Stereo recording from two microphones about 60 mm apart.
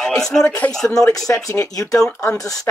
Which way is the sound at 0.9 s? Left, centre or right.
Left.